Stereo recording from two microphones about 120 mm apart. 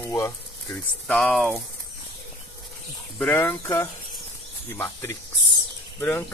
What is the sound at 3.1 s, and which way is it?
Speech, 15° left (ahead or behind).